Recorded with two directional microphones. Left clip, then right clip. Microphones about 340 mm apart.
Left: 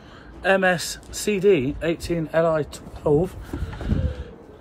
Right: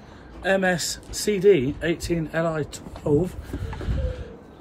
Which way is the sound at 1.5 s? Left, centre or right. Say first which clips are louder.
Right 1 dB; left.